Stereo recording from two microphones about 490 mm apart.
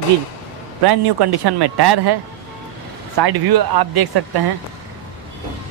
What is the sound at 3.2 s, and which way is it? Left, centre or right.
A man's voice, right.